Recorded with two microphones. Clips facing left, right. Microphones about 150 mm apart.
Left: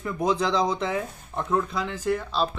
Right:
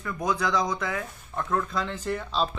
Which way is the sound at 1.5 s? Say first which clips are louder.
Left 2 dB; 15° left (ahead or behind).